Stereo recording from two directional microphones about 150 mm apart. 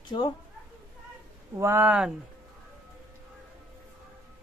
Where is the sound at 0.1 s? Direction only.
35° left (ahead or behind).